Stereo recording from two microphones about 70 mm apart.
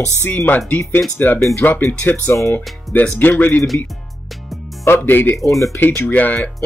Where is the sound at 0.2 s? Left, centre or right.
Left.